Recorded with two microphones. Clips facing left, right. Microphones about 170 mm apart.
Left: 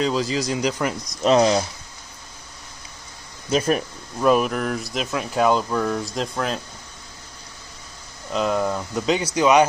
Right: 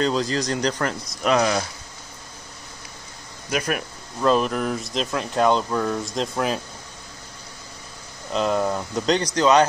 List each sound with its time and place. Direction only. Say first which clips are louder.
0.0 s speech: even; 5° left (ahead or behind)
1.2 s speech: left 4 dB; 25° left (ahead or behind)
3.4 s speech: left 5 dB; 30° left (ahead or behind)
4.2 s speech: left 1 dB; 10° left (ahead or behind); by 6.6 s 5° right (ahead or behind)
8.3 s speech: even; centre (ahead or behind)